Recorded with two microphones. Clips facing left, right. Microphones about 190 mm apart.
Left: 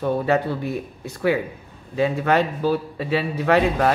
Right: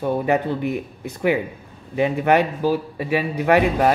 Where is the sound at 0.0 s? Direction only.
15° right (ahead or behind).